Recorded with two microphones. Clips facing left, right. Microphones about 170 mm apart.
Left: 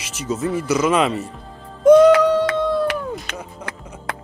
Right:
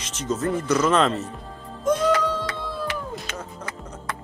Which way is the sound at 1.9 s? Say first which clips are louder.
Left 11 dB; 65° left (ahead or behind).